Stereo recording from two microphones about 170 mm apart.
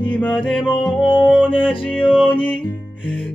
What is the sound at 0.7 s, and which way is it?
Music, 25° left (ahead or behind).